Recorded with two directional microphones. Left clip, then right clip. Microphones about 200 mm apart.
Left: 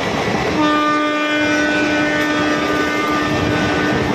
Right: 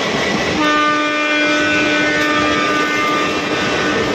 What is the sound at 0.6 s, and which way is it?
Train, 15° left (ahead or behind).